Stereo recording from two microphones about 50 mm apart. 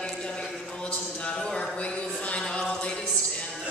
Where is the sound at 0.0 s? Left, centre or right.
Centre.